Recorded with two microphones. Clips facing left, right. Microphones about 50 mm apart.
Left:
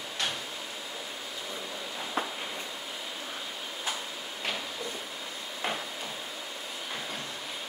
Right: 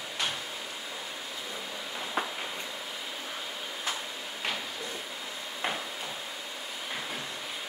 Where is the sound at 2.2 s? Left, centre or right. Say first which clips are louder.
Even; centre.